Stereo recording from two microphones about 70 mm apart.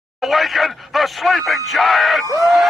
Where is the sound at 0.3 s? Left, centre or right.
Centre.